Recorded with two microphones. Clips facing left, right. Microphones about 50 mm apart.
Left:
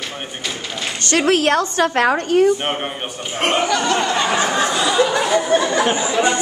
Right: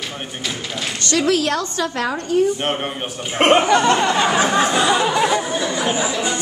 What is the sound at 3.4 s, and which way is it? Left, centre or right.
Speech, right.